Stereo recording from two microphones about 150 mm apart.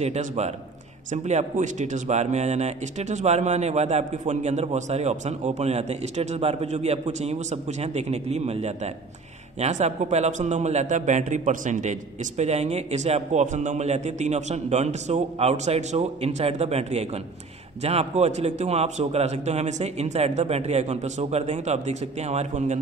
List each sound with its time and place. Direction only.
0.0 s speech: 45° right (ahead or behind)